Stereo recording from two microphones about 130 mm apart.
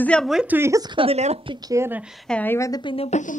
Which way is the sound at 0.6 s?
25° right (ahead or behind).